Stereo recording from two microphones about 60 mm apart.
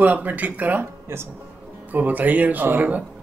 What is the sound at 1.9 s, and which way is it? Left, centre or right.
Speech, right.